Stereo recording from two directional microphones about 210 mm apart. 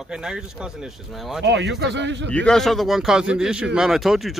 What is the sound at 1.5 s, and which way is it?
Speech, 60° right (ahead or behind).